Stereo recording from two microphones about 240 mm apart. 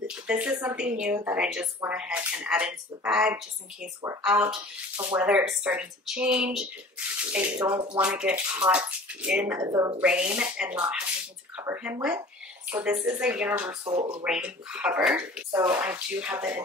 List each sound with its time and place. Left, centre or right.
0.0 s speech: centre
8.1 s speech: centre
13.8 s speech: right
14.2 s speech: centre